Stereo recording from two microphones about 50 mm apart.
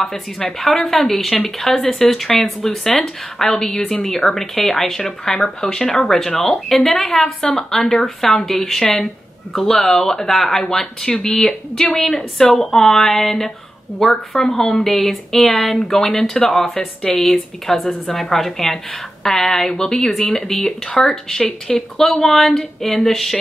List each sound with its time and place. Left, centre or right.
0.4 s speech: centre
16.7 s a woman's voice: centre
17.2 s speech: centre